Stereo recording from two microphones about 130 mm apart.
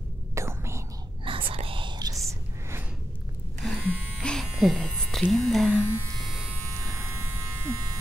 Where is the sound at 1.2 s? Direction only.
45° right (ahead or behind).